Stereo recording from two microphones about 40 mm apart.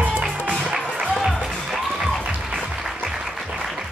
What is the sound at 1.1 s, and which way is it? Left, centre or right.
Music, centre.